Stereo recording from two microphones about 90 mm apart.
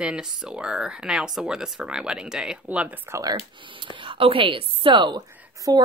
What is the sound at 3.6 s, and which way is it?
Speech, 65° right (ahead or behind).